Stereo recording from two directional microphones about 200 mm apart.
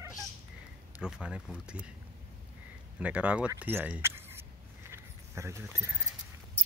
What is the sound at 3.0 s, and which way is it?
Speech, 5° right (ahead or behind).